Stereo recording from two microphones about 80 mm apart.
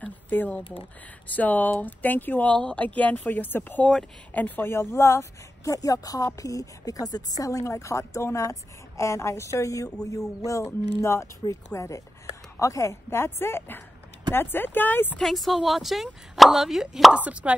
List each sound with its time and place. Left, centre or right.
0.0 s a sound: left
1.2 s speech: left
15.1 s speech: centre